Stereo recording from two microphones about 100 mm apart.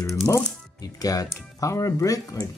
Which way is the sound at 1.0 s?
35° left (ahead or behind).